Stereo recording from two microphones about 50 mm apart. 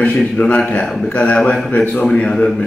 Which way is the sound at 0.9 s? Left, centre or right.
Centre.